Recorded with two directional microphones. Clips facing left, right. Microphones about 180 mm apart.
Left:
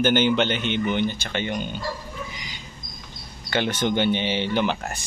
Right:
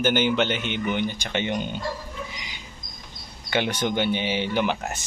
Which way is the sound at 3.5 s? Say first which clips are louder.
Left 1 dB; 10° right (ahead or behind).